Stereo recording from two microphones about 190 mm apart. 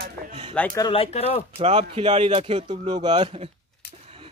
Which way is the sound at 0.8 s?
30° left (ahead or behind).